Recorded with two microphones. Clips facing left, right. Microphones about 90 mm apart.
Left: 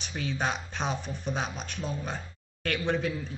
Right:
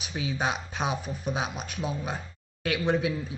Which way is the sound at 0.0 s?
10° right (ahead or behind).